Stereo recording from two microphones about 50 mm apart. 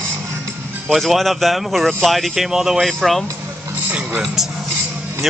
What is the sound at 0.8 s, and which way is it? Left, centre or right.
Speech, centre.